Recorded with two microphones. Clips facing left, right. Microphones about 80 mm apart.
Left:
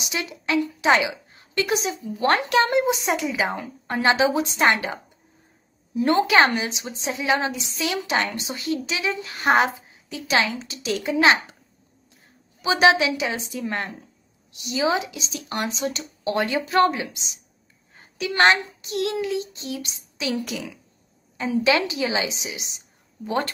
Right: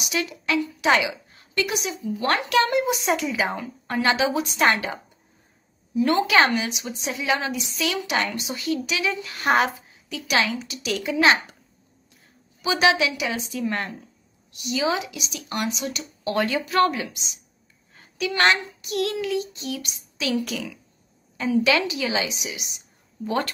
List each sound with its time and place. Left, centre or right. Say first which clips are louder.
0.0 s a woman's voice: right 2 dB; left
6.0 s a woman's voice: left 2 dB; left
12.6 s a woman's voice: left 2 dB; left